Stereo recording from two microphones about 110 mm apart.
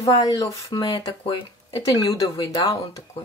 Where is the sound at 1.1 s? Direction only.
45° left (ahead or behind).